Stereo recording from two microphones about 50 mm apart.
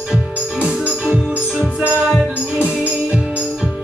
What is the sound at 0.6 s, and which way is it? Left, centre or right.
Music, right.